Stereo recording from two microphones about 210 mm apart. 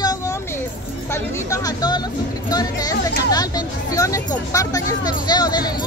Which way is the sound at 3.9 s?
15° left (ahead or behind).